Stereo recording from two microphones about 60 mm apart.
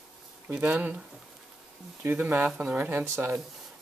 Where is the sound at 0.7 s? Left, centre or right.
Right.